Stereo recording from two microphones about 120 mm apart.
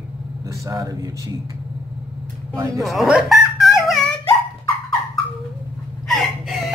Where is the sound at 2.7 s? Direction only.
Centre (ahead or behind).